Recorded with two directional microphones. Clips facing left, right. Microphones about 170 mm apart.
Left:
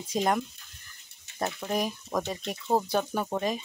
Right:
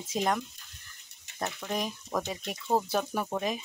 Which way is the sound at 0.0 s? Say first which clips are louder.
Left 2 dB; 5° right (ahead or behind).